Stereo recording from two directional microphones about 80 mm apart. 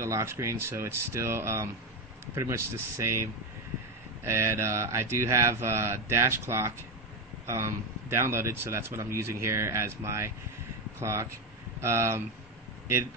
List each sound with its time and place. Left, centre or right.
0.0 s a man's voice: right
4.3 s a man's voice: right